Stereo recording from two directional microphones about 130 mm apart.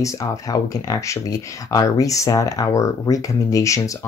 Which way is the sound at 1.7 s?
25° left (ahead or behind).